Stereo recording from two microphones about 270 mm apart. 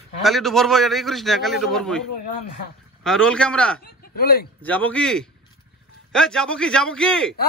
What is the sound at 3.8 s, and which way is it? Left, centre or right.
Speech, left.